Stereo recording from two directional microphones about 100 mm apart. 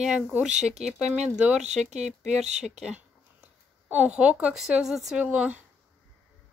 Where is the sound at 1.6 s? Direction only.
90° right.